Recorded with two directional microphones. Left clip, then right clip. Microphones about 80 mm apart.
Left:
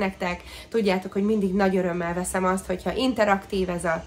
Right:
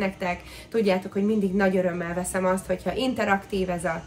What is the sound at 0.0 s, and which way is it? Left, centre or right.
Speech, left.